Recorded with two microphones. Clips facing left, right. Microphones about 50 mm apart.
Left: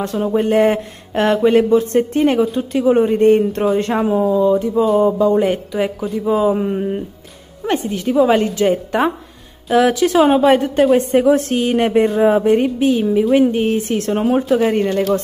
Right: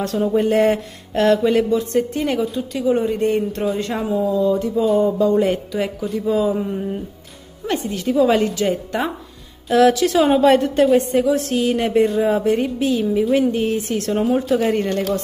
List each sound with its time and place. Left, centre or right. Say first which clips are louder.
0.0 s a woman's voice: left 1 dB; centre
1.4 s speech: left 5 dB; left
4.6 s a woman's voice: left 3 dB; centre
9.7 s a woman's voice: left 1 dB; centre
11.0 s speech: left 4 dB; left